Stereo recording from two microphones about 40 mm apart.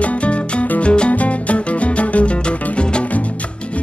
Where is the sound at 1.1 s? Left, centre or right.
Left.